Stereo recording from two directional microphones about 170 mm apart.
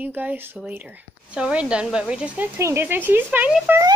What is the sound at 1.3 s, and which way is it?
Speech, 5° right (ahead or behind).